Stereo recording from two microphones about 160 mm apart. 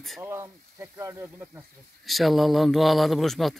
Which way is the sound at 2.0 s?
Centre (ahead or behind).